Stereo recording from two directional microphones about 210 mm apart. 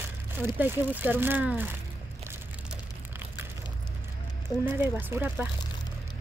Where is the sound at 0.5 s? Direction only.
10° right (ahead or behind).